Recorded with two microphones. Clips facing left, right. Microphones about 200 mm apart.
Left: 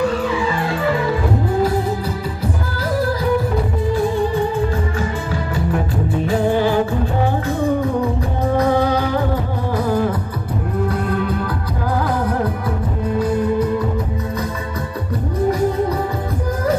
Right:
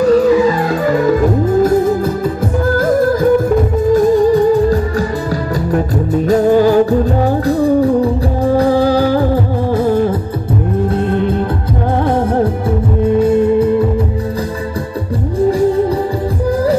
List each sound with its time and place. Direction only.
0.0 s music: 40° right (ahead or behind)
2.8 s music: 50° right (ahead or behind); by 13.8 s 30° right (ahead or behind)